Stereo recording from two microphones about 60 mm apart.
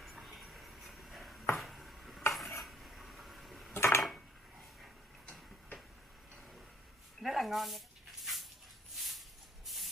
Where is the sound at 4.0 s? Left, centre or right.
Centre.